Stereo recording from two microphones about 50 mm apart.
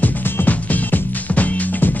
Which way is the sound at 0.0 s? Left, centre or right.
Left.